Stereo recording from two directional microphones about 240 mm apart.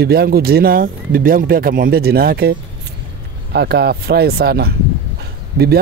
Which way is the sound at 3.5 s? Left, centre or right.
Right.